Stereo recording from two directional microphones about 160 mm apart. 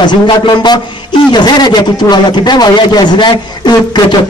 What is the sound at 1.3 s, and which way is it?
A man's voice, 25° left (ahead or behind).